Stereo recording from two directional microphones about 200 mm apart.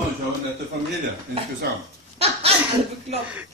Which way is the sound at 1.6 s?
55° right (ahead or behind).